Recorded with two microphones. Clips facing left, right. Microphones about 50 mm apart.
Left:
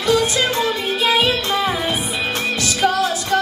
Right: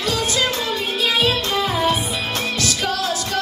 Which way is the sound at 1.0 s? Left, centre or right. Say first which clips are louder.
Left 2 dB; left.